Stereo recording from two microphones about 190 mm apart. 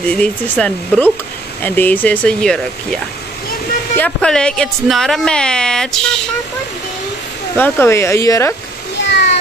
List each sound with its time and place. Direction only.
0.1 s speech: 5° left (ahead or behind)
7.5 s speech: 10° left (ahead or behind)
9.0 s a sound: 65° left (ahead or behind)